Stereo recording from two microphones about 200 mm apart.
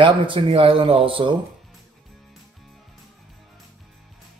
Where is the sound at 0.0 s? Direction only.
25° right (ahead or behind).